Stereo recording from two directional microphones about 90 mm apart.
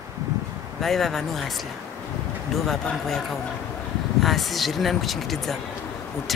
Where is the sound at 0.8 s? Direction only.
Centre (ahead or behind).